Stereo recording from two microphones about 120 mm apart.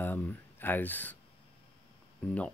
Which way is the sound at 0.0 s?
15° left (ahead or behind).